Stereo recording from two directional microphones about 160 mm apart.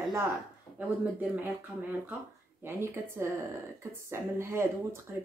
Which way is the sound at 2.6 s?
15° right (ahead or behind).